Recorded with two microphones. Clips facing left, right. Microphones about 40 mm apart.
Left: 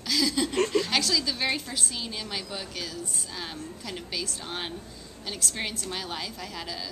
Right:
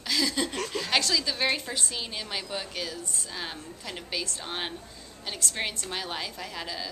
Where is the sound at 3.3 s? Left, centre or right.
Centre.